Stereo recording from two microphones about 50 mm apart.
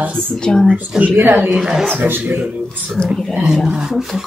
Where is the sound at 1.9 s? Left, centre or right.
Right.